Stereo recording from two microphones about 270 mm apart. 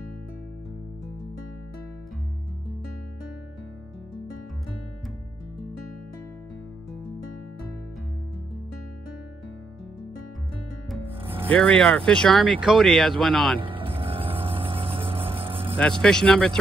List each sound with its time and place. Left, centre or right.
10.9 s music: centre
11.4 s speech: centre
13.6 s boat: centre
15.4 s vehicle: centre
16.0 s speech: centre